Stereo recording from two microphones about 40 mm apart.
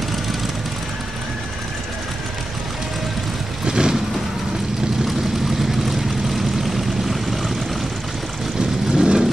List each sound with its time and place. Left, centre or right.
3.6 s vehicle: centre
5.7 s vehicle: centre
8.9 s vehicle: centre